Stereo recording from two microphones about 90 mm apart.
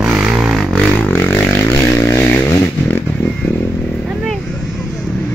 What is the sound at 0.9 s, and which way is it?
Vehicle, 20° left (ahead or behind).